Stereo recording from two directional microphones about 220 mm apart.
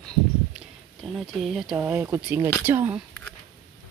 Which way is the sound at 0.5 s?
Centre (ahead or behind).